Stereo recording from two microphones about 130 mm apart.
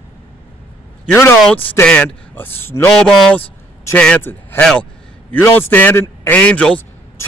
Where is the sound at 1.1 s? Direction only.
5° left (ahead or behind).